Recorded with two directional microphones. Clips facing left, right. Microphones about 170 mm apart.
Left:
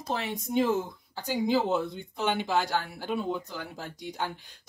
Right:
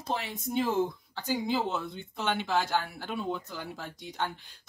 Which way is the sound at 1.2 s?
15° left (ahead or behind).